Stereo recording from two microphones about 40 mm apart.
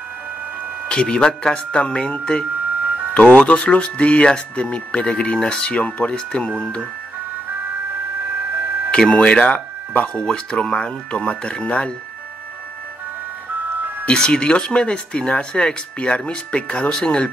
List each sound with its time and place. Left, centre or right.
0.8 s speech: centre
2.5 s music: right
3.2 s speech: left
8.4 s music: right
9.3 s speech: left
13.5 s music: right
14.1 s speech: left